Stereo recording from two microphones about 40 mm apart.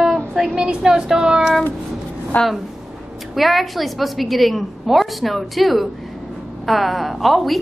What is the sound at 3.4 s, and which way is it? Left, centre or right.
A woman's voice, centre.